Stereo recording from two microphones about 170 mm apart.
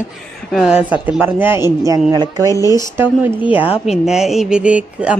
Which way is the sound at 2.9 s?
10° right (ahead or behind).